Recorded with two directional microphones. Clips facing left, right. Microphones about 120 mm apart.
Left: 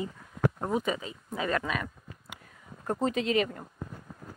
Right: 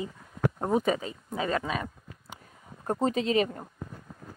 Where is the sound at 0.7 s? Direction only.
40° right (ahead or behind).